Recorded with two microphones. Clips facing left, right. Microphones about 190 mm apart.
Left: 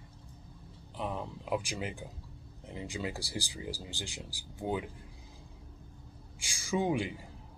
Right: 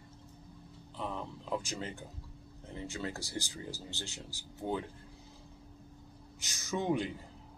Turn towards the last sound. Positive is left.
turn(degrees=10)  # may be behind; listen again after turning